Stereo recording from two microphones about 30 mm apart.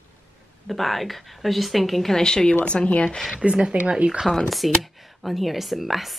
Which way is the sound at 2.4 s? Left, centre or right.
Left.